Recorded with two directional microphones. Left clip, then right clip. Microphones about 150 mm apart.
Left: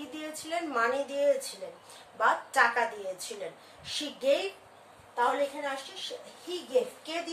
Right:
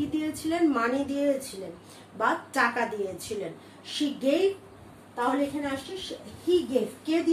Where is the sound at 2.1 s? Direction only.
15° right (ahead or behind).